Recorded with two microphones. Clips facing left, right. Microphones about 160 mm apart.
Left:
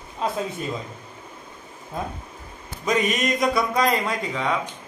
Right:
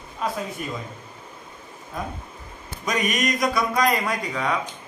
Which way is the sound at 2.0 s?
25° left (ahead or behind).